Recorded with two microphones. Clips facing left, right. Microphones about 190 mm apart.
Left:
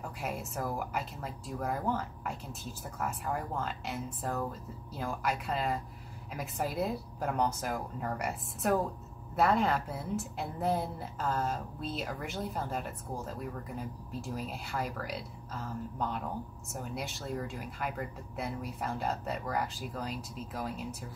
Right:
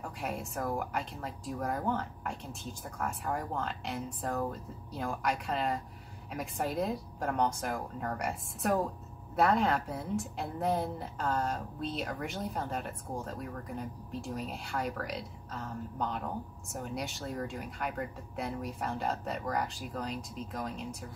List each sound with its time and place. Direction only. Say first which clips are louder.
0.2 s a woman's voice: right 1 dB; centre (ahead or behind)